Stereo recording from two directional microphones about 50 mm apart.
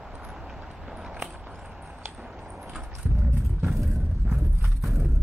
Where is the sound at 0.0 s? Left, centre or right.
Centre.